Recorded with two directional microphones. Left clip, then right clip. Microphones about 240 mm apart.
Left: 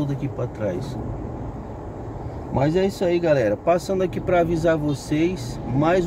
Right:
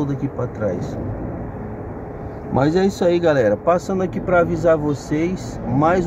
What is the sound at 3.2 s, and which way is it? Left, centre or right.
Speech, centre.